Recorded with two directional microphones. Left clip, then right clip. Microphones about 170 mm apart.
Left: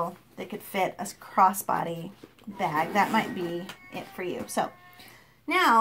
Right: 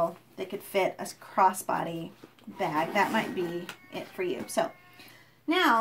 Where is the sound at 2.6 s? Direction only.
40° left (ahead or behind).